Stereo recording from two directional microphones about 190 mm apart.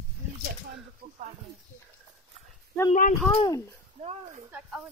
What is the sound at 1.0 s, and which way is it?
Snake, 45° right (ahead or behind).